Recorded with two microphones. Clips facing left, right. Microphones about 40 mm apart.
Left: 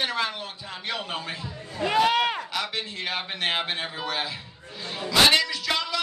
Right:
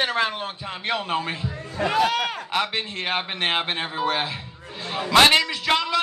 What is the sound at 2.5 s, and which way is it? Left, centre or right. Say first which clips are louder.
A man's voice: right 5 dB; right.